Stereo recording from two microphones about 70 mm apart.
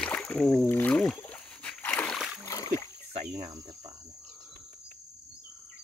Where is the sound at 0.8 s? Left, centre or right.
Centre.